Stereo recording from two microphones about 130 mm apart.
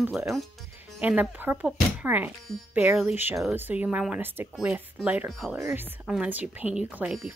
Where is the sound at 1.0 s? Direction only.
15° right (ahead or behind).